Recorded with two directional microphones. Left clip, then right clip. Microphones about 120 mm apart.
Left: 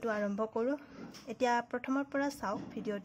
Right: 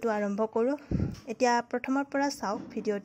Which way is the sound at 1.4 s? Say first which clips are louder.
Right 5 dB; 35° right (ahead or behind).